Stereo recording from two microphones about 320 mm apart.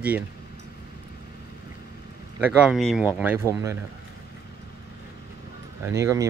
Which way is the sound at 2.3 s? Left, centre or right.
Centre.